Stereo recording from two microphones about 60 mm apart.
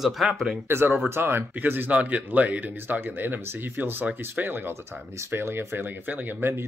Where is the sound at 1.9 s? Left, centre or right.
Right.